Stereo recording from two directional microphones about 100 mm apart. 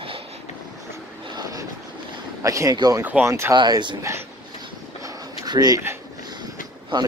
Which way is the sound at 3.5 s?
45° right (ahead or behind).